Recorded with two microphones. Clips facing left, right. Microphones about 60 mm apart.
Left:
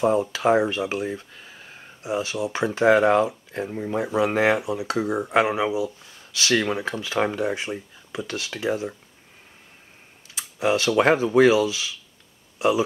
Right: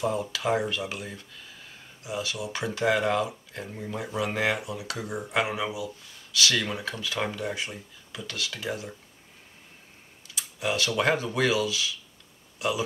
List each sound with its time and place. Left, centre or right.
0.2 s speech: left
10.3 s speech: left